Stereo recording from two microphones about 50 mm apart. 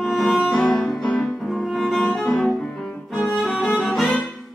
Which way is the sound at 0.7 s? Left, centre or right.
Centre.